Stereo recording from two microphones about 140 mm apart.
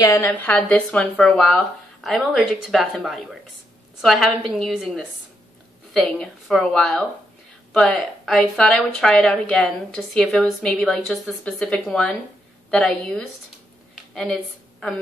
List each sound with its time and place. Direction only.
0.0 s a woman's voice: 20° left (ahead or behind)
0.3 s a woman's voice: 10° left (ahead or behind)
6.0 s a woman's voice: 5° left (ahead or behind)